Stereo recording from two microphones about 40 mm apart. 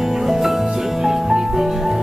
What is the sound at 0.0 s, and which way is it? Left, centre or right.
Music, centre.